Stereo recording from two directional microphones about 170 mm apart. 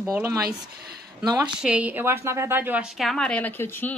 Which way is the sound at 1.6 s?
5° right (ahead or behind).